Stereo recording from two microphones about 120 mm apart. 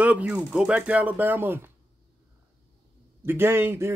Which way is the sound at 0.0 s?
10° right (ahead or behind).